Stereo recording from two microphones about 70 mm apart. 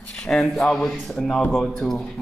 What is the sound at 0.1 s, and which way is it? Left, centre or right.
A man's voice, centre.